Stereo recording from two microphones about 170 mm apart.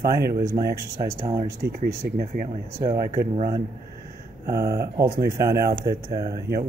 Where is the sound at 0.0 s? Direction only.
65° right (ahead or behind).